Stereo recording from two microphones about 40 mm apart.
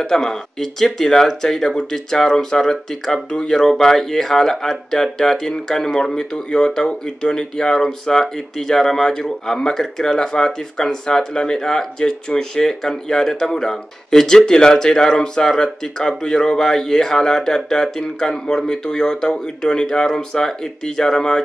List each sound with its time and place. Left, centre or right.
0.0 s speech: centre
3.3 s speech: left